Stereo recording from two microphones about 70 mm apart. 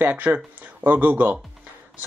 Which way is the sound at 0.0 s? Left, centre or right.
Right.